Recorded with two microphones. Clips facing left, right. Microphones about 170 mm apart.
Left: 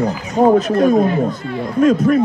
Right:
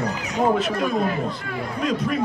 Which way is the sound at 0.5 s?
40° left (ahead or behind).